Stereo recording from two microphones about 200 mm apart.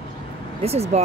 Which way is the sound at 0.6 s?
30° right (ahead or behind).